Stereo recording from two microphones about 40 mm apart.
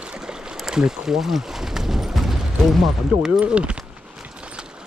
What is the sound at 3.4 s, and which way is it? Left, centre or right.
Speech, right.